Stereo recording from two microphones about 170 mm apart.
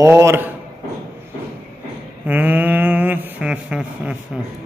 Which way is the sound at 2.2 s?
10° right (ahead or behind).